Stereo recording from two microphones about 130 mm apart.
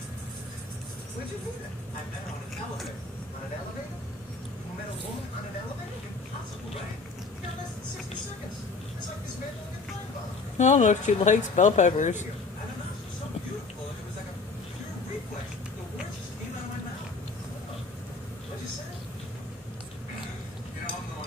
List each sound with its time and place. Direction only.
10.6 s speech: 65° left (ahead or behind)